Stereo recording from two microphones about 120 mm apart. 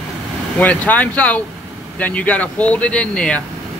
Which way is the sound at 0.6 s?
15° left (ahead or behind).